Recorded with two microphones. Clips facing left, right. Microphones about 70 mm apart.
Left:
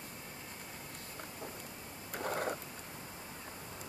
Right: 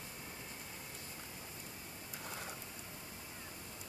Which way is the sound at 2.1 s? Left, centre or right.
Left.